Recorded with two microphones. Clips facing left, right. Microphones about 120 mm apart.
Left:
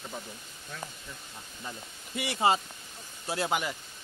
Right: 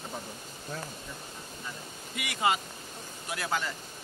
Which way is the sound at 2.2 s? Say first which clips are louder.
Left 3 dB; 30° left (ahead or behind).